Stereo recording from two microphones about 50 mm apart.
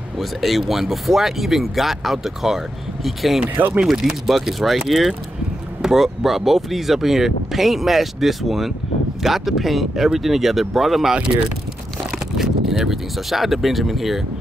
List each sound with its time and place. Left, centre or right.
0.2 s speech: centre
3.5 s speech: right
3.8 s speech: centre
12.4 s speech: centre